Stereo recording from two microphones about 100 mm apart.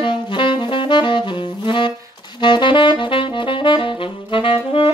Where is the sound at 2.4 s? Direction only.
50° left (ahead or behind).